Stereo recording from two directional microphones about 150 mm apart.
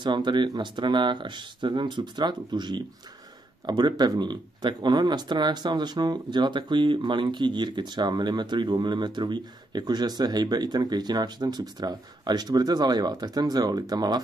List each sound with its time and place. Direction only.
0.0 s speech: 30° right (ahead or behind)